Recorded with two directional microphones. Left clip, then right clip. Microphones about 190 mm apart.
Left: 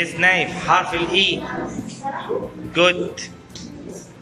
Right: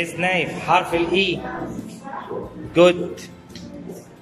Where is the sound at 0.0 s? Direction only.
15° right (ahead or behind).